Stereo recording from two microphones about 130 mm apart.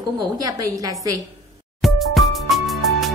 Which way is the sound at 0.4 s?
30° right (ahead or behind).